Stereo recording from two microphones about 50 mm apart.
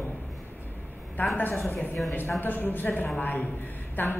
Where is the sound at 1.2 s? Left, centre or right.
Left.